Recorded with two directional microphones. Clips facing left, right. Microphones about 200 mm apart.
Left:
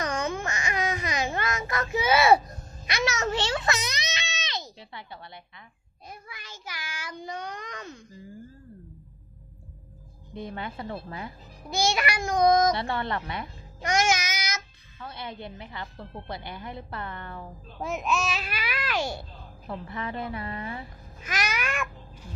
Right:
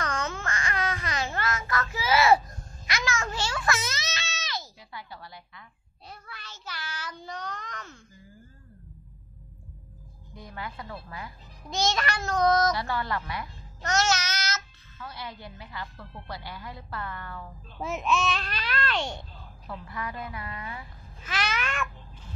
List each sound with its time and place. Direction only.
0.0 s babbling: 15° left (ahead or behind)
2.4 s a sound: 25° left (ahead or behind)
6.0 s child singing: 10° left (ahead or behind)
10.3 s a woman's voice: 25° left (ahead or behind)
11.6 s child singing: 10° left (ahead or behind)
12.7 s a child's voice: 25° left (ahead or behind)
13.9 s child singing: 10° left (ahead or behind)
15.0 s a woman's voice: 25° left (ahead or behind)
17.7 s child singing: centre (ahead or behind)
19.7 s a woman's voice: 25° left (ahead or behind)
21.2 s babbling: 10° left (ahead or behind)